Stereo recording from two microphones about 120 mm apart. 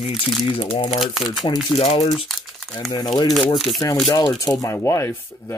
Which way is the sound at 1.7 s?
55° left (ahead or behind).